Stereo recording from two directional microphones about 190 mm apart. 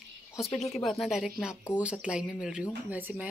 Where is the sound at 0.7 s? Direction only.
Centre (ahead or behind).